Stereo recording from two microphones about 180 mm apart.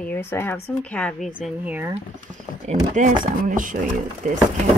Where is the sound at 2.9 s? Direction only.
45° right (ahead or behind).